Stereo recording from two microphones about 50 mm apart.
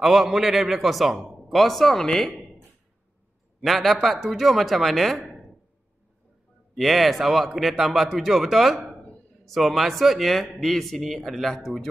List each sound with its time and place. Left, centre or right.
0.0 s a man's voice: centre
2.0 s a woman's voice: centre
3.6 s a man's voice: centre
6.7 s a man's voice: centre